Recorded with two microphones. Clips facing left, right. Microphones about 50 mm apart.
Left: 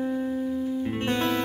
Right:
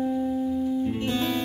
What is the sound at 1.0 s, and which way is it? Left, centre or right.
Music, left.